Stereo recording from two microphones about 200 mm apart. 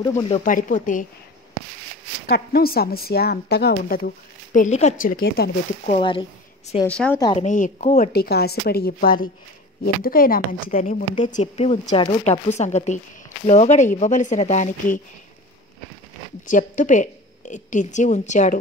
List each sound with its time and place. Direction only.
0.0 s speech: 20° left (ahead or behind)
0.5 s a woman's voice: 40° left (ahead or behind)
2.2 s speech: 50° left (ahead or behind)
4.6 s speech: 35° left (ahead or behind)
5.9 s speech: 25° left (ahead or behind)
6.9 s speech: 5° left (ahead or behind)
7.3 s a woman's voice: 40° left (ahead or behind)
8.1 s a woman's voice: 50° left (ahead or behind); by 15.0 s 35° left (ahead or behind)
16.4 s a woman's voice: 40° left (ahead or behind)